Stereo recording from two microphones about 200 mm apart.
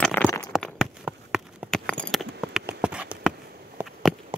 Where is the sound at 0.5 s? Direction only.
Centre (ahead or behind).